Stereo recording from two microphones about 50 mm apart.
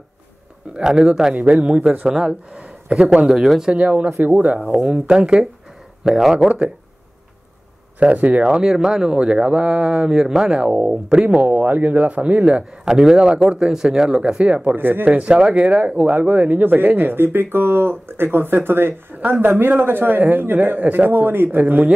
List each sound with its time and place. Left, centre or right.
0.8 s speech: centre
1.3 s speech: right
3.3 s speech: centre
3.7 s a man's voice: right
4.9 s speech: centre
6.0 s speech: centre
8.0 s speech: right
8.5 s speech: centre
9.2 s speech: right
10.6 s speech: right
11.2 s a man's voice: right
12.8 s speech: centre
14.8 s speech: right
15.0 s a man's voice: right